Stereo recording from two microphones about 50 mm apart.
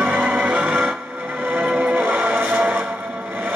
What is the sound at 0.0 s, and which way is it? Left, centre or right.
Music, right.